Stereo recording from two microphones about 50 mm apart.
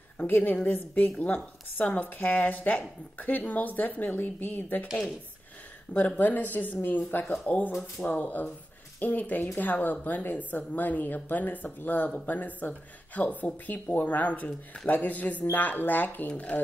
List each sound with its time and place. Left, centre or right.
0.3 s speech: left
5.9 s speech: left
7.4 s speech: left
16.3 s speech: left